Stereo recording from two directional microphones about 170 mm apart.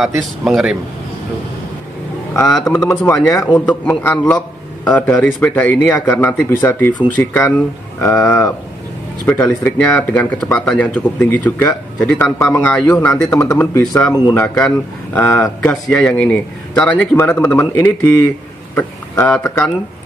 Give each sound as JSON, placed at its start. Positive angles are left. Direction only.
{"t": 0.0, "sound": "speech", "side_deg": 0}
{"t": 2.6, "sound": "speech", "side_deg": 10}